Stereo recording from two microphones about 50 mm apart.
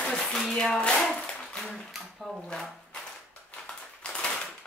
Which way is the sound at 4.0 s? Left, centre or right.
Left.